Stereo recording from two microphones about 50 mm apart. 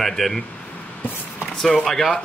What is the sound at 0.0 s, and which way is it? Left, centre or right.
Speech, centre.